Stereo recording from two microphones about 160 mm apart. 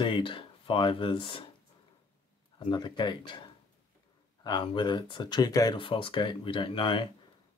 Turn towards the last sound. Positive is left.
turn(degrees=30)  # may be behind; listen again after turning